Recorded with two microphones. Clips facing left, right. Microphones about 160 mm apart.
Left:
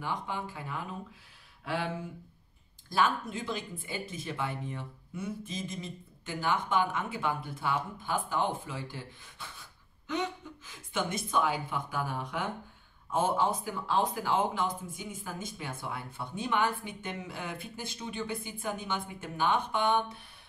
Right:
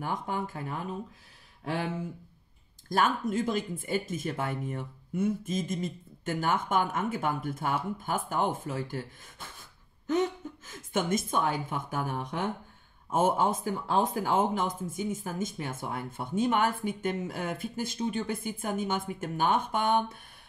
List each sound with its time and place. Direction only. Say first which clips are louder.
0.0 s speech: right 3 dB; 45° right (ahead or behind)
2.9 s speech: right 2 dB; 45° right (ahead or behind)
10.0 s speech: right 6 dB; 45° right (ahead or behind)